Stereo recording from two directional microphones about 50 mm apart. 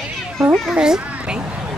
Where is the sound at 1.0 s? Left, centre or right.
Right.